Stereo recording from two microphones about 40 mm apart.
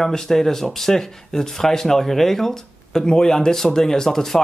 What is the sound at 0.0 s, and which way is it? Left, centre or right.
Speech, centre.